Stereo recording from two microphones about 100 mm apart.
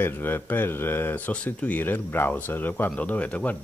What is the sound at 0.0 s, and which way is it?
Speech, 20° left (ahead or behind).